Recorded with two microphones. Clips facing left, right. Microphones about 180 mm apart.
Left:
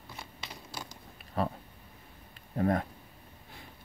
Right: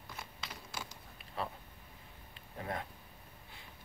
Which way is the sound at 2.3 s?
50° left (ahead or behind).